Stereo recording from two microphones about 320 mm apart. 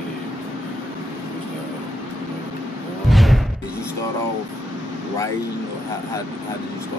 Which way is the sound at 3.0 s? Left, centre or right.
Centre.